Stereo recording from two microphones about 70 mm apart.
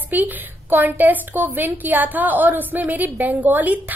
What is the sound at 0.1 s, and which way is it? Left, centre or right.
A woman's voice, right.